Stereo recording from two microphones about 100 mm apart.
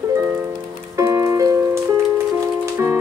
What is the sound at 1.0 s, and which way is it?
Music, 30° right (ahead or behind).